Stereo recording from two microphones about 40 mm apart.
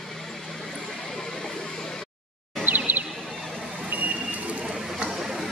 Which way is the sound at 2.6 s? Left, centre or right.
Right.